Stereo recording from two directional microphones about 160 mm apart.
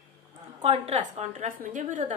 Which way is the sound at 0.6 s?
40° right (ahead or behind).